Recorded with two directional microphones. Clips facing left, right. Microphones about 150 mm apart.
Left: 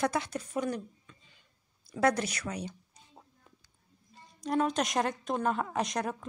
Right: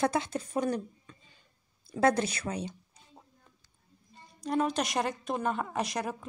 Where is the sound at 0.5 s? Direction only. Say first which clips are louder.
Right 3 dB; 35° right (ahead or behind).